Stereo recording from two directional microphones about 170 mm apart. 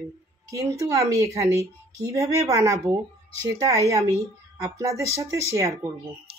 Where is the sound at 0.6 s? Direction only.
20° right (ahead or behind).